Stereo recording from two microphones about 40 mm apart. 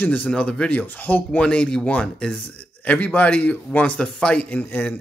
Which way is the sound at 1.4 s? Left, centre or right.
Left.